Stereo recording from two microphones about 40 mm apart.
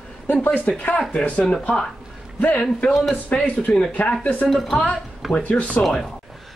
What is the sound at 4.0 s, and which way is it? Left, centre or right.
Speech, left.